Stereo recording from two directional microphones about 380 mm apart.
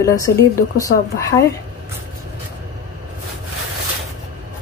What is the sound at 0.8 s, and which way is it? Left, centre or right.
Speech, centre.